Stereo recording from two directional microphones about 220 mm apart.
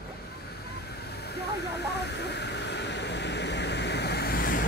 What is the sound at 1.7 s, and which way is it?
Vehicle, 50° left (ahead or behind).